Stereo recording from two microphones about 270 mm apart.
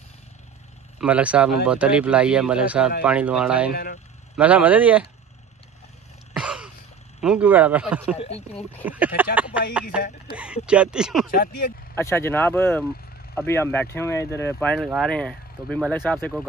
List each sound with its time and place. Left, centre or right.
0.9 s speech: centre
3.7 s speech: left
4.4 s speech: centre
6.3 s a sound: centre
7.2 s speech: centre
8.2 s speech: left
8.8 s speech: centre
11.2 s speech: left
11.9 s speech: centre